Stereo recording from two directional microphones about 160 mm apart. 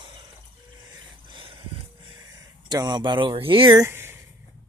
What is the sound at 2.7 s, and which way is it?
Speech, 25° right (ahead or behind).